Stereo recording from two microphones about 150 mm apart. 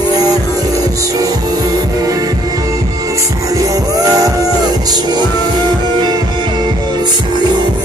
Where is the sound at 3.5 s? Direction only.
20° right (ahead or behind).